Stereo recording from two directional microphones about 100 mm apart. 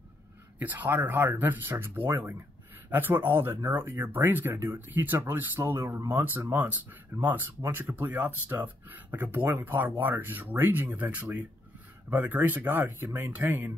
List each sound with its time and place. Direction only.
0.6 s speech: 15° right (ahead or behind)